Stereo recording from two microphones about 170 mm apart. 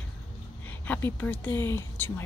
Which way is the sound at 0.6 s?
10° left (ahead or behind).